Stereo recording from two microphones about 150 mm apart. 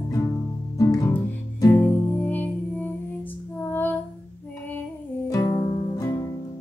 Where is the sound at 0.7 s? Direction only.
25° left (ahead or behind).